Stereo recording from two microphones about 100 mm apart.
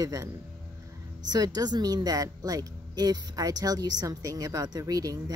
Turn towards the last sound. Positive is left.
turn(degrees=-40)  # may be behind; listen again after turning